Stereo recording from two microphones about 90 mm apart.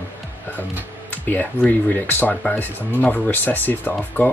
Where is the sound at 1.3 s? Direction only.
20° left (ahead or behind).